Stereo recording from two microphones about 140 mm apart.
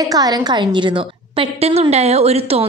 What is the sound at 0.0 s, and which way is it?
A woman's voice, 25° right (ahead or behind).